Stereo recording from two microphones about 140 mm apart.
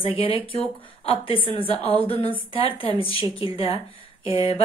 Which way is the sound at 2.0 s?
35° right (ahead or behind).